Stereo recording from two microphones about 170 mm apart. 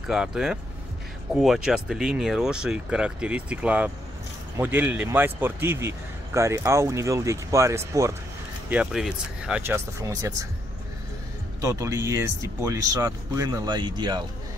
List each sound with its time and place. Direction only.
0.1 s a man's voice: 5° right (ahead or behind)
8.6 s a man's voice: 5° right (ahead or behind)
11.6 s speech: 15° right (ahead or behind)